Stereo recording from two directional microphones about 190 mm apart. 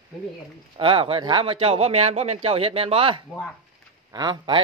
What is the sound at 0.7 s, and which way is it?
Speech, 25° right (ahead or behind).